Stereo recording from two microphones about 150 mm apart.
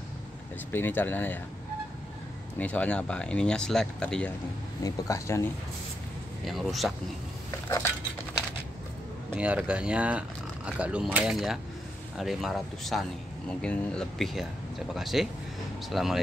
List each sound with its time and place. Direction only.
0.7 s speech: 15° left (ahead or behind)
2.6 s speech: 10° left (ahead or behind)
4.8 s speech: 20° left (ahead or behind)
6.4 s speech: centre (ahead or behind)
9.3 s speech: 10° right (ahead or behind)